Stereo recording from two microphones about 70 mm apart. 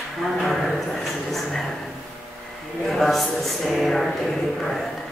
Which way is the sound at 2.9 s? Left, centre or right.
Centre.